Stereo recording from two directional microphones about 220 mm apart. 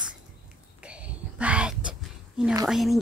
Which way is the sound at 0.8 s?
5° right (ahead or behind).